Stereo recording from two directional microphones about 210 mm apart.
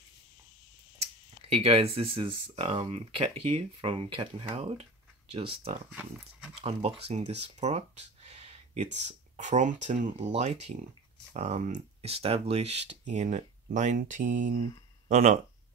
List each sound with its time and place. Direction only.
1.5 s speech: 30° right (ahead or behind)
5.9 s speech: 5° right (ahead or behind)
6.6 s speech: 30° right (ahead or behind)